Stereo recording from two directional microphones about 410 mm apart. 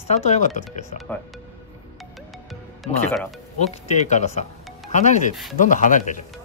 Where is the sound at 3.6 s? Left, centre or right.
Centre.